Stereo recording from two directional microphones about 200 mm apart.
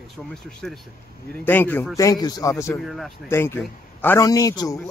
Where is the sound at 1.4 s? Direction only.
10° left (ahead or behind).